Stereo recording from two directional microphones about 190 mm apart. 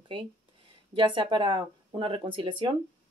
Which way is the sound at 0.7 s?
25° right (ahead or behind).